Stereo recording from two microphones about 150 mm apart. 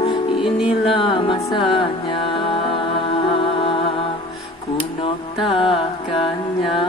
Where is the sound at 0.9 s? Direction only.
35° left (ahead or behind).